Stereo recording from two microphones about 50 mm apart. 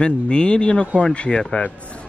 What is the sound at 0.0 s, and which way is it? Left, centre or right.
Speech, left.